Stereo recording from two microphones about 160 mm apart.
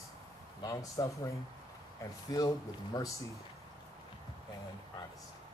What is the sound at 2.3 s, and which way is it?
Speech, 20° left (ahead or behind).